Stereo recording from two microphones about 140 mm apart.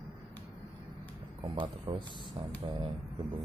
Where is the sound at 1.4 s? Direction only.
30° right (ahead or behind).